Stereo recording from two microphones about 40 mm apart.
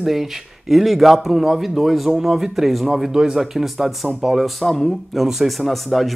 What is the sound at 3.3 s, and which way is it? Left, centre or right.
Speech, centre.